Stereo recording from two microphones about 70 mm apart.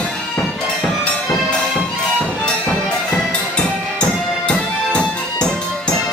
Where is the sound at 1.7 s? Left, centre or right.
Centre.